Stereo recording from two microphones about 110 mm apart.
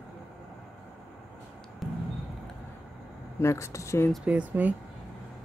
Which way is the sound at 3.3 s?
25° left (ahead or behind).